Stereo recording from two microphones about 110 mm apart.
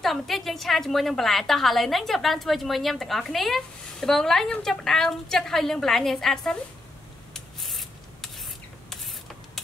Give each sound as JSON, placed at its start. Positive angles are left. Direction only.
{"t": 0.0, "sound": "a woman's voice", "side_deg": 0}
{"t": 7.3, "sound": "rub", "side_deg": 0}